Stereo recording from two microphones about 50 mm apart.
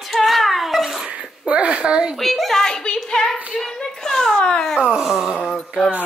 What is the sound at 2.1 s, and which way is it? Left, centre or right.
Speech, centre.